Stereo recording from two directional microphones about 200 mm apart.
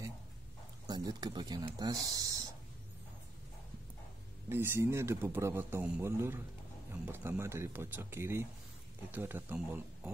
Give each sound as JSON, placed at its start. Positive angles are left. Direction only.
{"t": 0.8, "sound": "speech", "side_deg": -20}
{"t": 4.5, "sound": "a man's voice", "side_deg": -10}